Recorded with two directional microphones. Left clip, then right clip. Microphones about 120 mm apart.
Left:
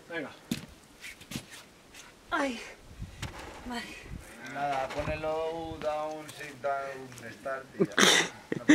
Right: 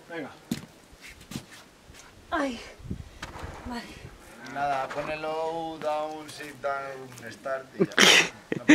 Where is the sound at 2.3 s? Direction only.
5° left (ahead or behind).